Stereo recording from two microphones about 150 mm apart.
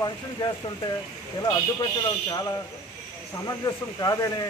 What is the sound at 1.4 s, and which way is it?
Speech, 25° left (ahead or behind).